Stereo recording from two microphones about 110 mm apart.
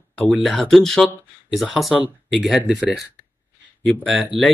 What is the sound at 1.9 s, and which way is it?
Speech, 10° right (ahead or behind).